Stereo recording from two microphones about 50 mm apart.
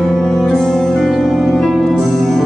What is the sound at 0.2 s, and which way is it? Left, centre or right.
Music, centre.